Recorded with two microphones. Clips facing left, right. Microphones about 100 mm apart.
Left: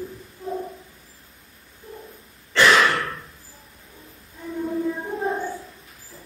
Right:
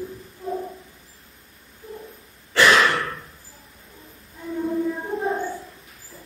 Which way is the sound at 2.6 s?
Centre (ahead or behind).